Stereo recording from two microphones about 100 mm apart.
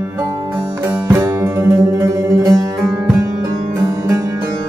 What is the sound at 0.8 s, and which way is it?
Music, 25° right (ahead or behind).